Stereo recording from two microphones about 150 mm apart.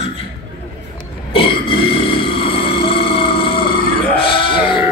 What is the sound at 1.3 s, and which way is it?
Burping, 35° left (ahead or behind).